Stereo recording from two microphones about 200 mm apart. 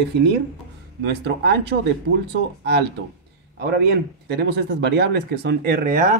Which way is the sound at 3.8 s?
55° right (ahead or behind).